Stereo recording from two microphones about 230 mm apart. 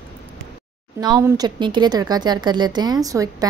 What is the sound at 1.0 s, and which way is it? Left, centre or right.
A woman's voice, centre.